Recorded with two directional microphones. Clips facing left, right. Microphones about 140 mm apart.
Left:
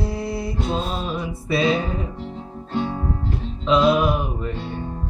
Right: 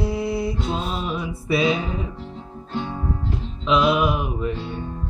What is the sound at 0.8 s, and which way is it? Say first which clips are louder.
Music: left 1 dB; 30° left (ahead or behind).